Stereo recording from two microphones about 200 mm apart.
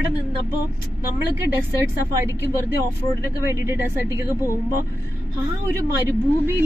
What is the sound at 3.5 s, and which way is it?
Speech, 15° right (ahead or behind).